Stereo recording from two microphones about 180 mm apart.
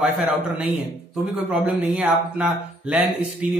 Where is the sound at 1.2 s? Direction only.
5° right (ahead or behind).